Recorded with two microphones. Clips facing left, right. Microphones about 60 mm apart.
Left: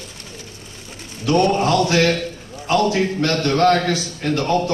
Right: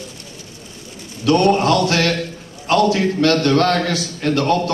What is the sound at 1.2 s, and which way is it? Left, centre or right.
Speech, right.